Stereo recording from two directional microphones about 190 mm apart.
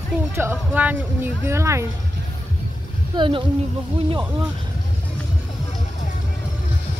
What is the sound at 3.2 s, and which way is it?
Speech, 25° right (ahead or behind).